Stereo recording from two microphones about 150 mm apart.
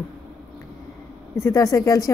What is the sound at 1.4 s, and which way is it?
Speech, 20° left (ahead or behind).